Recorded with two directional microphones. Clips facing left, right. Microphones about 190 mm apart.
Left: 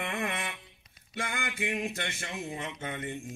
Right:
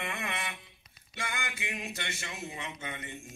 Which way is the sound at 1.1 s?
50° left (ahead or behind).